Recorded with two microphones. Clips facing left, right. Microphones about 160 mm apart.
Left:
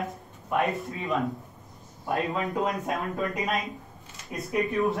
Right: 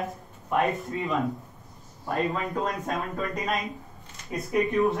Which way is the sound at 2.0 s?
20° left (ahead or behind).